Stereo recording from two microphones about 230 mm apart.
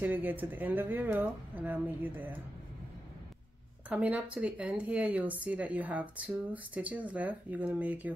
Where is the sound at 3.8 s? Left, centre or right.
Centre.